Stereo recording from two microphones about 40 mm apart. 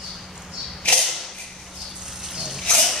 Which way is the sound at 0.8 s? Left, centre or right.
Left.